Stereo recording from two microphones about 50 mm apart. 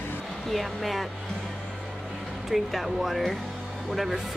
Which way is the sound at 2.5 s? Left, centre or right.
Centre.